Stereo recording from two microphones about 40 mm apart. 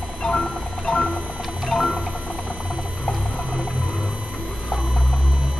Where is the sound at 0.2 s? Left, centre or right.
Centre.